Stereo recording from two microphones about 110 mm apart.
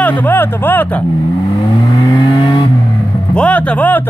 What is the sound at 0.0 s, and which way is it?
Speech, 15° left (ahead or behind).